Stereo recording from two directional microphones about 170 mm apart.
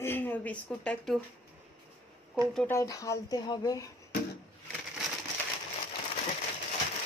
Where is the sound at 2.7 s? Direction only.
20° left (ahead or behind).